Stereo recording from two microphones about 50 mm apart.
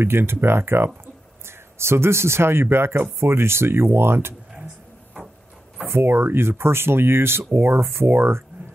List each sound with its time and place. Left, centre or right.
0.0 s speech: right
5.9 s speech: right